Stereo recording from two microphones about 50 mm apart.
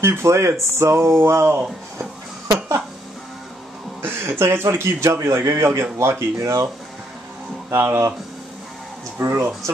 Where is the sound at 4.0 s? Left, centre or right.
Right.